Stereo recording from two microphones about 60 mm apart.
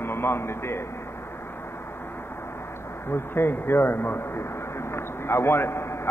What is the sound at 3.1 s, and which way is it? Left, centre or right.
A man's voice, left.